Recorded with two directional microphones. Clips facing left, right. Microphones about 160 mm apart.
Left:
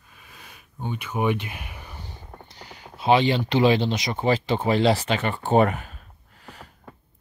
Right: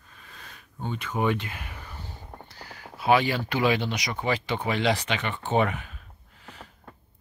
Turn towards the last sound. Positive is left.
turn(degrees=40)  # may be behind; listen again after turning